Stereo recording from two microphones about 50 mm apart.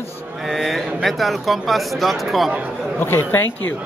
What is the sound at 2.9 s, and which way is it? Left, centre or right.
Speech, left.